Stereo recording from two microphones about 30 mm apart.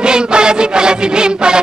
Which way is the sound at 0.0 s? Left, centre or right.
Right.